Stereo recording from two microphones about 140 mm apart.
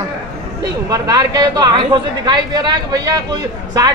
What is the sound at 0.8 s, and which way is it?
Speech, 25° right (ahead or behind).